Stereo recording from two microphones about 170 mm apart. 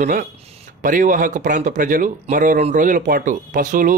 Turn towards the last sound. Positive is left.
turn(degrees=-50)  # may be behind; listen again after turning